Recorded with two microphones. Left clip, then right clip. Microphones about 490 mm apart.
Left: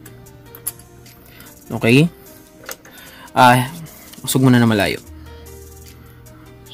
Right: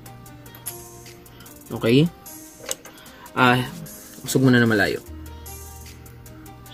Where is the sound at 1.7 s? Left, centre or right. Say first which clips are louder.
Left 4 dB; left.